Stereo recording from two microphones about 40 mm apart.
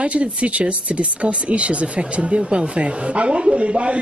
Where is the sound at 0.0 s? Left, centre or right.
Right.